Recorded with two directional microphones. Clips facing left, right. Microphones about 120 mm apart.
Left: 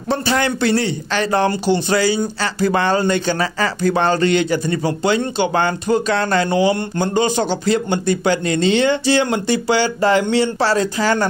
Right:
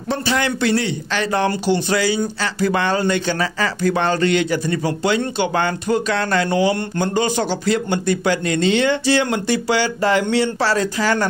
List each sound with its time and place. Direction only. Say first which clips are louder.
0.1 s a man's voice: left 2 dB; 35° left (ahead or behind)